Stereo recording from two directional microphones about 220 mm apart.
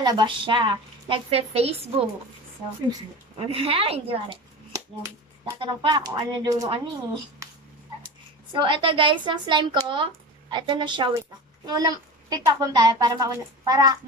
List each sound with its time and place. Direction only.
0.0 s a woman's voice: 20° right (ahead or behind)
3.3 s a woman's voice: 25° right (ahead or behind)
7.4 s dog: 15° right (ahead or behind)
8.5 s a woman's voice: 20° right (ahead or behind)